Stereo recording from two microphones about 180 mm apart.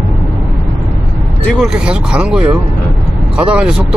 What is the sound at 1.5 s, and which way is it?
Speech, 5° right (ahead or behind).